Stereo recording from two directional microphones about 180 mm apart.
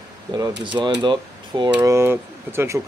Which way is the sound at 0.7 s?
25° right (ahead or behind).